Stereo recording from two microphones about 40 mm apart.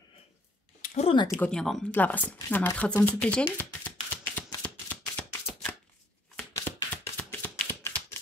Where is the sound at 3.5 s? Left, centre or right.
Left.